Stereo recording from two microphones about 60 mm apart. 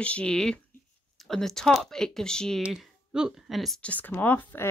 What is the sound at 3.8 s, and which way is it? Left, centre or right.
Speech, left.